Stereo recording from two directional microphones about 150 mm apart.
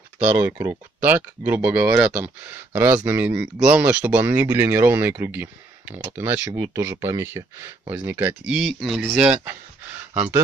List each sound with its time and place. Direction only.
0.4 s speech: 15° right (ahead or behind)